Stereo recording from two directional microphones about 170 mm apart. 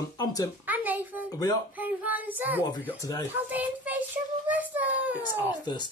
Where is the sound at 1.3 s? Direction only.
25° left (ahead or behind).